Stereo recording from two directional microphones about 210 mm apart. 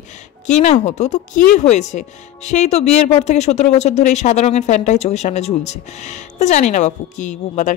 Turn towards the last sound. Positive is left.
turn(degrees=35)  # may be behind; listen again after turning